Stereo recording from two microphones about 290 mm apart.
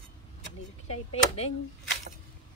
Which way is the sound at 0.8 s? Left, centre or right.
Left.